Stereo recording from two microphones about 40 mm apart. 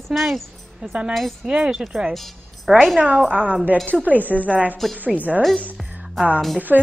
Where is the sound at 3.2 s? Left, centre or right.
Right.